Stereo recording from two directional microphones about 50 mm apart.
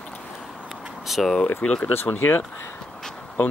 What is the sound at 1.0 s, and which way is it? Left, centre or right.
Speech, centre.